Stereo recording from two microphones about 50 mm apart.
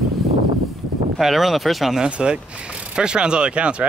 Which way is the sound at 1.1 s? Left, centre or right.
Centre.